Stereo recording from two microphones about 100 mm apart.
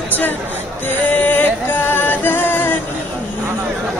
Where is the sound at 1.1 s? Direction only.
15° left (ahead or behind).